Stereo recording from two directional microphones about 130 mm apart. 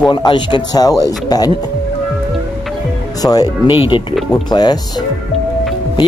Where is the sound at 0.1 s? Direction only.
35° left (ahead or behind).